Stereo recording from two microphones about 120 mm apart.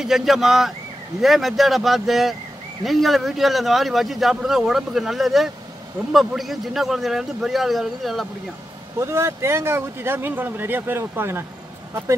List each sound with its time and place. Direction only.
0.0 s speech: centre (ahead or behind)
9.0 s speech: 25° right (ahead or behind)